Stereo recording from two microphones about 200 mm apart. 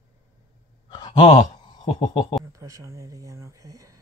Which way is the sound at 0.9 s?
20° left (ahead or behind).